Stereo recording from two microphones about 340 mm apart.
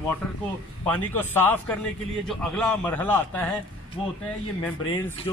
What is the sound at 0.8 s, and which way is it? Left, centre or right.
Speech, centre.